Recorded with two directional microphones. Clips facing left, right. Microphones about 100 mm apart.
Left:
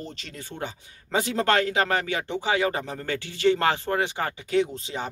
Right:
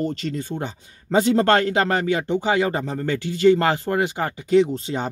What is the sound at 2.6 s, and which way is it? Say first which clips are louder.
Speech: right 3 dB; 30° right (ahead or behind).